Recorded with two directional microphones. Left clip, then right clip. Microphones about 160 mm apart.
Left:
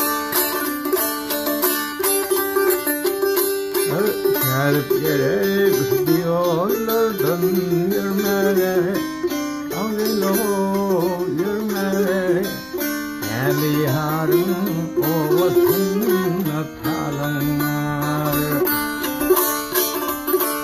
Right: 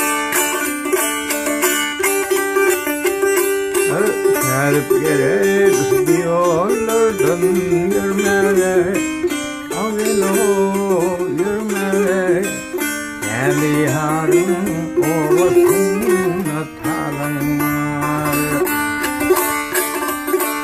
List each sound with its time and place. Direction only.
4.6 s music: 40° right (ahead or behind)
10.0 s music: 50° right (ahead or behind)
13.5 s music: 45° right (ahead or behind)